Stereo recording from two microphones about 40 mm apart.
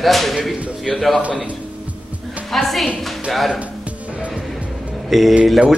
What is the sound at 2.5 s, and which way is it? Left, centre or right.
Speech, centre.